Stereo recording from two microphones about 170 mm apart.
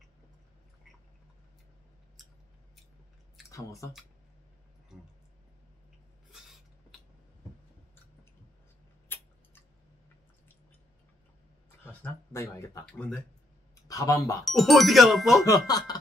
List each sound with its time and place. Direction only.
2.2 s scissors: centre (ahead or behind)
3.4 s speech: 20° left (ahead or behind)
6.3 s a sound: centre (ahead or behind)
9.1 s a sound: 10° left (ahead or behind)
11.8 s speech: 10° left (ahead or behind)
12.8 s speech: 5° left (ahead or behind)
13.8 s speech: 20° left (ahead or behind)
14.4 s speech: centre (ahead or behind)
15.4 s speech: 20° left (ahead or behind)